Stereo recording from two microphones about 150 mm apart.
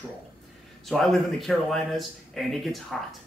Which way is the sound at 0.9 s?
Centre (ahead or behind).